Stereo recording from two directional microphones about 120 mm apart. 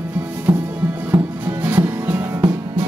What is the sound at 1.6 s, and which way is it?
Music, 15° right (ahead or behind).